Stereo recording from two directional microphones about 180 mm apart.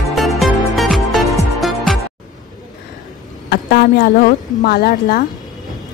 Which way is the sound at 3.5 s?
60° left (ahead or behind).